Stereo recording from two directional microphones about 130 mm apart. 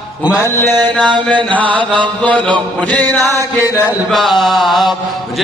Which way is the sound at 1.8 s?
40° right (ahead or behind).